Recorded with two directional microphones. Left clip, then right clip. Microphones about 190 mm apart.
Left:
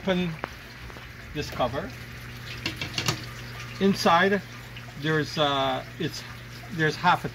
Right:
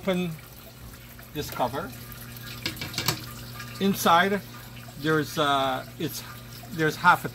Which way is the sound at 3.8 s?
15° left (ahead or behind).